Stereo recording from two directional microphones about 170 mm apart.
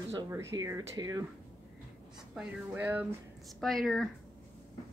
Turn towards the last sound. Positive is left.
turn(degrees=0)  # may be behind; listen again after turning